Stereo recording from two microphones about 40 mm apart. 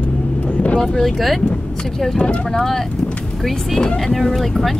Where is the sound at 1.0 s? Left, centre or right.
Centre.